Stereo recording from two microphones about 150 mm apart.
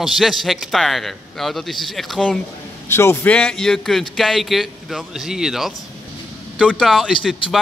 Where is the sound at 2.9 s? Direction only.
15° left (ahead or behind).